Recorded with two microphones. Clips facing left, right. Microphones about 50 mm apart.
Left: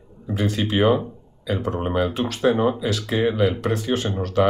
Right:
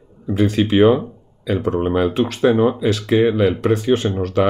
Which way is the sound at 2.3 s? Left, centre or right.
Right.